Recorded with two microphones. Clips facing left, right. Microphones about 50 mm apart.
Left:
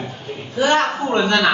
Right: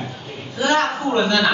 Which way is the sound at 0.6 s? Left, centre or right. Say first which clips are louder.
Left 2 dB; left.